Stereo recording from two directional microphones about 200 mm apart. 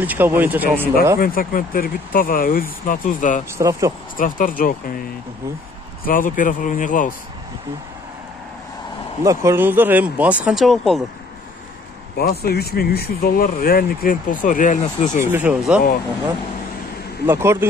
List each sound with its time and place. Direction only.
0.0 s speech: 10° right (ahead or behind)
1.2 s speech: 45° left (ahead or behind)
3.5 s speech: 15° right (ahead or behind)
4.2 s speech: 45° left (ahead or behind)
6.0 s speech: 45° left (ahead or behind)
9.2 s speech: 15° right (ahead or behind); by 11.0 s centre (ahead or behind)
12.2 s speech: 50° left (ahead or behind)
15.3 s speech: 5° right (ahead or behind)
17.3 s speech: 10° right (ahead or behind)